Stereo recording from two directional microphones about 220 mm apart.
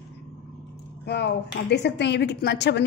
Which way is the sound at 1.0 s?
50° left (ahead or behind).